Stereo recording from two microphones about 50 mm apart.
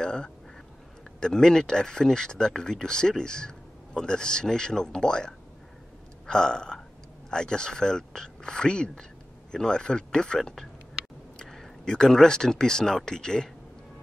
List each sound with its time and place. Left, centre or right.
0.0 s speech: centre
6.2 s burping: centre
7.2 s speech: centre